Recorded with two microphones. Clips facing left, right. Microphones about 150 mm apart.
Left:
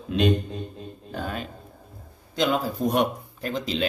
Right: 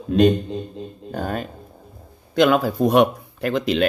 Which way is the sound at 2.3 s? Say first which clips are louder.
Right 7 dB; 65° right (ahead or behind).